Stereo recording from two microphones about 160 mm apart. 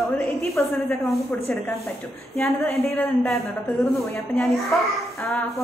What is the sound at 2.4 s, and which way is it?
A woman's voice, centre (ahead or behind).